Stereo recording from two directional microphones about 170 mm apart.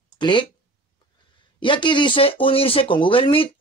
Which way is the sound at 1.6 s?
30° left (ahead or behind).